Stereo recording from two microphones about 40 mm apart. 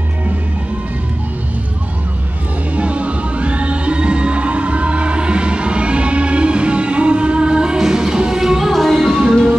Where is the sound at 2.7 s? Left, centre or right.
Right; by 8.7 s centre.